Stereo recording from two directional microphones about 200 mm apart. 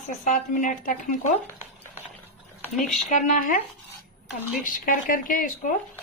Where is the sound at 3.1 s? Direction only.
40° left (ahead or behind).